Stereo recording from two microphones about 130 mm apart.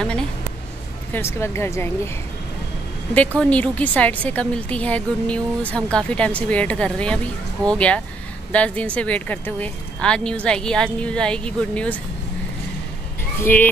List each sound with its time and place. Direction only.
1.1 s speech: 20° left (ahead or behind)
3.3 s speech: 10° left (ahead or behind)
13.4 s speech: 15° left (ahead or behind)